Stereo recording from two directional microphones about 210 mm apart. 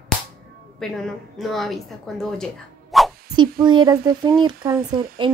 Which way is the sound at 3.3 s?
20° right (ahead or behind).